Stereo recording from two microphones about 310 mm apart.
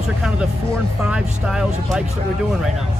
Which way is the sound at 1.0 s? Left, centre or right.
Centre.